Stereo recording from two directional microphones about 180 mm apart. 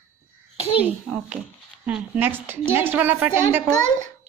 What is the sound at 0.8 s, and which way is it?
A child's voice, 5° right (ahead or behind).